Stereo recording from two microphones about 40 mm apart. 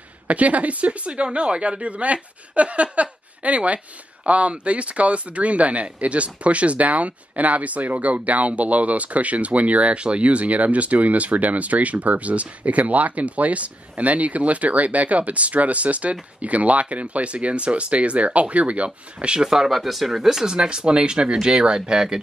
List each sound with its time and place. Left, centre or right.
0.3 s speech: right
19.5 s speech: centre